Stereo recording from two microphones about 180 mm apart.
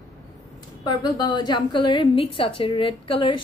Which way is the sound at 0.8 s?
25° left (ahead or behind).